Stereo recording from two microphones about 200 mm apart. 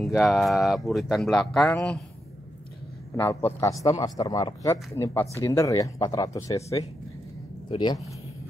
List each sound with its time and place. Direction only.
0.0 s speech: centre (ahead or behind)
3.2 s a man's voice: 10° left (ahead or behind)